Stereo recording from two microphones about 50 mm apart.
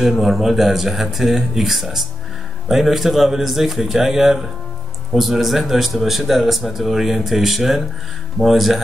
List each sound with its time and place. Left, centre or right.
0.0 s a man's voice: centre